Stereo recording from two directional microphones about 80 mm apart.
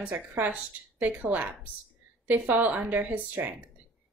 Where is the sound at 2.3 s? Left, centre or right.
Right.